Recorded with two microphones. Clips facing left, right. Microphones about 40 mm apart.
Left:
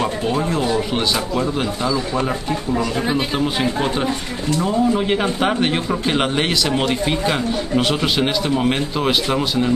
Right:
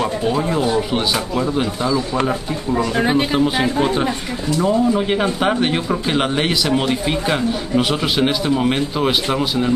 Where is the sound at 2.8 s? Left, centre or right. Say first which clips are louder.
Right 3 dB; right.